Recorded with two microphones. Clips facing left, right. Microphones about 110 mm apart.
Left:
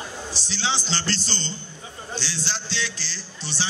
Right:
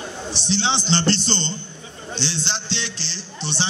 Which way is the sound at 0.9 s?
25° right (ahead or behind).